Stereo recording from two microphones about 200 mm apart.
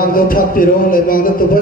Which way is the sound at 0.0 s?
45° left (ahead or behind).